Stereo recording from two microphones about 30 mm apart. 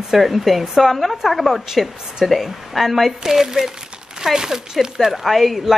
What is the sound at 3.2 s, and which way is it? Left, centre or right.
Speech, centre.